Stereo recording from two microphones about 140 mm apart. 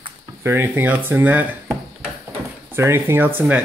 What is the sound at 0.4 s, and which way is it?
Speech, 20° right (ahead or behind).